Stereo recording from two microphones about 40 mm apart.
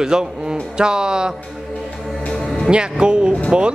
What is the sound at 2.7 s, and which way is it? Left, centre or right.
Speech, right.